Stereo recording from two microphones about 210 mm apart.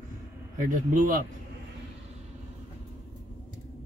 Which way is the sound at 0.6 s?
40° right (ahead or behind).